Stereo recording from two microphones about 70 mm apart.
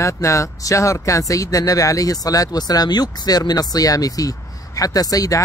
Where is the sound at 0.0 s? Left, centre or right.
Left.